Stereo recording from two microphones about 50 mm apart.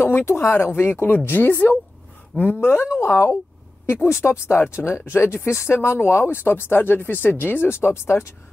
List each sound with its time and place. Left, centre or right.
0.2 s speech: left
2.3 s speech: left
2.6 s speech: left
7.7 s speech: left